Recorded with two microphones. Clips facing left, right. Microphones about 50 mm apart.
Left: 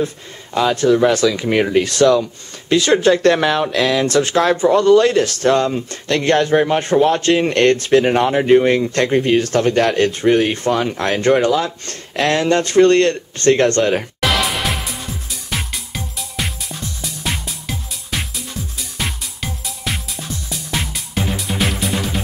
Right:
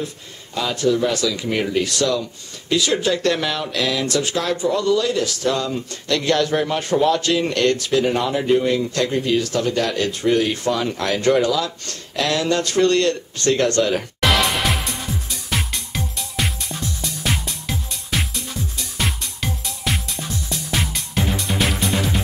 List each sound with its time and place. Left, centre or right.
1.1 s speech: left
14.2 s music: centre